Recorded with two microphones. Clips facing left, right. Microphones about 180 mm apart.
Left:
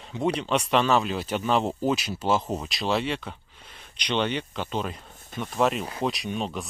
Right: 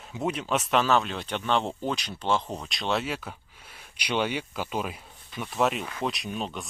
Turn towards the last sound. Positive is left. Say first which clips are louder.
# left 3 dB
turn(degrees=0)  # may be behind; listen again after turning